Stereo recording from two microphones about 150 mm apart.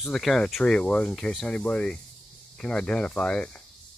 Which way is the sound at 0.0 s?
Centre (ahead or behind).